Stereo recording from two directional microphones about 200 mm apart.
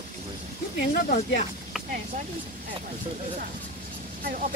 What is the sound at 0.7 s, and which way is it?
Speech, 55° left (ahead or behind).